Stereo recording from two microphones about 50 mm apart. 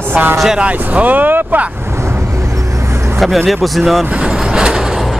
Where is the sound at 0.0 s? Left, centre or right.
Right.